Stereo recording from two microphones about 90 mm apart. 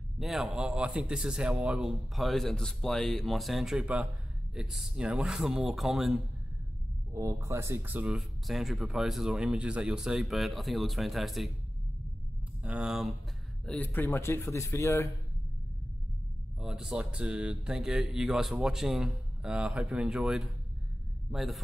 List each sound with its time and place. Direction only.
0.2 s a man's voice: 5° right (ahead or behind)
7.1 s speech: 35° right (ahead or behind)
8.2 s a man's voice: centre (ahead or behind)
12.6 s speech: 10° right (ahead or behind)
13.7 s speech: 20° left (ahead or behind)
16.5 s speech: 5° right (ahead or behind)